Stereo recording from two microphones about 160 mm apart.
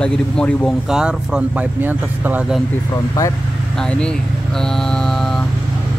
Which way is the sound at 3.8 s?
5° left (ahead or behind).